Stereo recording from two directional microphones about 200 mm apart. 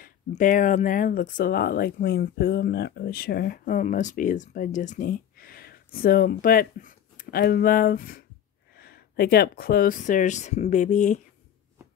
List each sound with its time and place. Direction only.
0.0 s speech: 40° left (ahead or behind)